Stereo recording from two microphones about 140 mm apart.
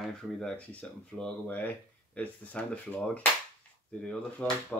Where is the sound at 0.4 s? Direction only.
5° left (ahead or behind).